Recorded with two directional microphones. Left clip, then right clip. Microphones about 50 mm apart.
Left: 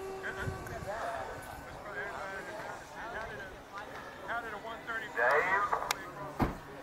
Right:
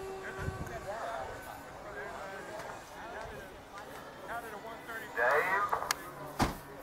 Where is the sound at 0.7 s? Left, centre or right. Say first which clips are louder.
Left 1 dB; centre.